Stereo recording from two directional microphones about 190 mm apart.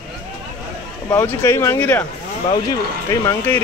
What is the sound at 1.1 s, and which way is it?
Speech, 10° left (ahead or behind).